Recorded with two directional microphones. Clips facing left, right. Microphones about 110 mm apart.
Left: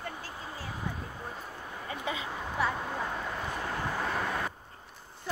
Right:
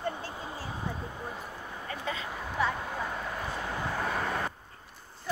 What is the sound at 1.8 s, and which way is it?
Speech, 15° left (ahead or behind).